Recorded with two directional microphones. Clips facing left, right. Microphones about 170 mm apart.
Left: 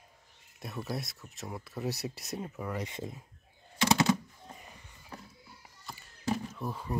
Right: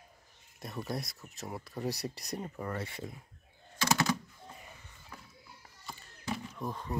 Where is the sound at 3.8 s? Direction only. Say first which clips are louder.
Left 4 dB; 25° left (ahead or behind).